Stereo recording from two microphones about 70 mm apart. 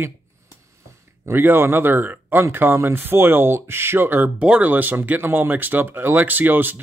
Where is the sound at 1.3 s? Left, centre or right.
Right.